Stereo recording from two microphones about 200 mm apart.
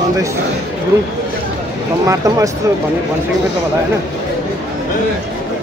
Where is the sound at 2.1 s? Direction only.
15° right (ahead or behind).